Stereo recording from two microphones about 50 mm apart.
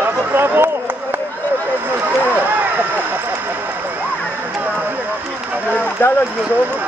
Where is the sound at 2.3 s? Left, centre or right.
Right.